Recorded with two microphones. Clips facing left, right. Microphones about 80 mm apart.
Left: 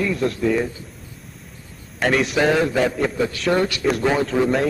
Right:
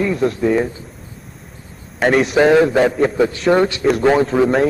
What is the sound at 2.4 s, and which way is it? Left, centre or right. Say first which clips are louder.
Speech: right 7 dB; right.